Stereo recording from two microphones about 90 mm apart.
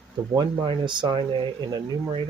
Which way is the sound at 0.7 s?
60° right (ahead or behind).